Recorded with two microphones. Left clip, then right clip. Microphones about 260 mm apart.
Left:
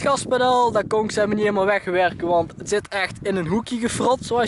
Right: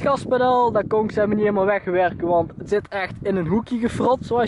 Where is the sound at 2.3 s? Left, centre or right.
Right.